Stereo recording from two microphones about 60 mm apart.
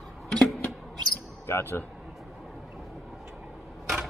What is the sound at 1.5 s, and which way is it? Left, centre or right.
Speech, left.